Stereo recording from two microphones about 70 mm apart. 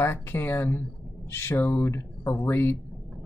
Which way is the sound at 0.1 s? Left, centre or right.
Left.